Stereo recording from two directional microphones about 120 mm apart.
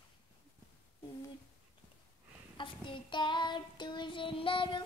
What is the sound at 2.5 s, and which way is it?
Child singing, 45° left (ahead or behind).